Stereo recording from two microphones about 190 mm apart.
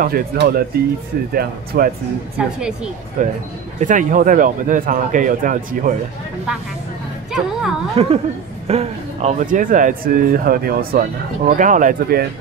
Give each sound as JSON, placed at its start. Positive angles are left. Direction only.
{"t": 0.0, "sound": "speech", "side_deg": -50}
{"t": 2.3, "sound": "speech", "side_deg": -5}
{"t": 3.2, "sound": "speech", "side_deg": -40}
{"t": 7.9, "sound": "speech", "side_deg": -35}